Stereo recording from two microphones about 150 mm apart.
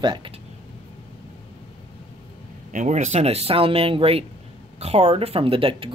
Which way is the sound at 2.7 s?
55° right (ahead or behind).